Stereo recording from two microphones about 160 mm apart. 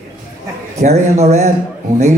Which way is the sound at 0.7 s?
45° right (ahead or behind).